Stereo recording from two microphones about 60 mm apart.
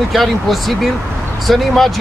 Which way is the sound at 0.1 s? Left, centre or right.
Centre.